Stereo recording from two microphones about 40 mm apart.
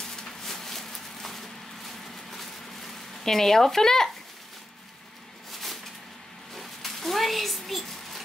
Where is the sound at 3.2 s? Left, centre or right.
Centre.